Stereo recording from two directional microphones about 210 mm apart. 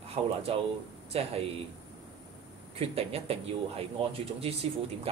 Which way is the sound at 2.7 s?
30° right (ahead or behind).